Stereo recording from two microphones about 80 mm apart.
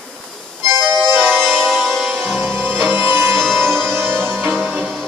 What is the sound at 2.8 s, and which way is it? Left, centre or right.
Music, right.